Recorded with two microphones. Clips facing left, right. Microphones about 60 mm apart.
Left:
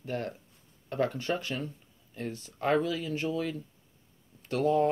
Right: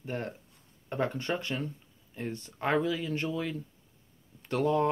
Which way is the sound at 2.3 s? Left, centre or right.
Right.